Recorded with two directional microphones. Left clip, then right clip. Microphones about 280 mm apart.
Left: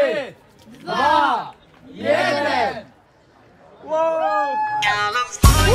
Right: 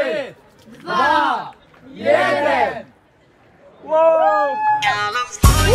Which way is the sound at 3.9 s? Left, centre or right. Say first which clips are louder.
Right 6 dB; centre.